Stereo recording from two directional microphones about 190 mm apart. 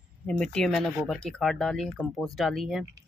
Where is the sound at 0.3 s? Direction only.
5° left (ahead or behind).